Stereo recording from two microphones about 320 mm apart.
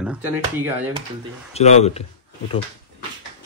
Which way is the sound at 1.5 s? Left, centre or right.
Centre.